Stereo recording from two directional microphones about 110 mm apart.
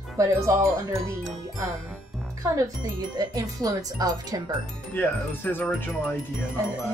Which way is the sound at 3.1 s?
35° right (ahead or behind).